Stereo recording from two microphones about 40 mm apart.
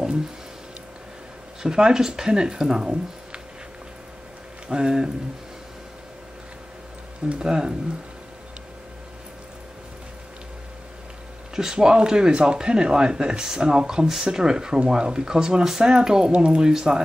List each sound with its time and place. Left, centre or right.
1.6 s speech: centre
4.6 s speech: centre
7.3 s speech: centre
11.5 s speech: centre